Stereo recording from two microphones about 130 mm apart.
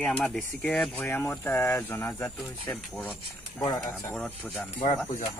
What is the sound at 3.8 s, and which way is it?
Speech, 5° left (ahead or behind).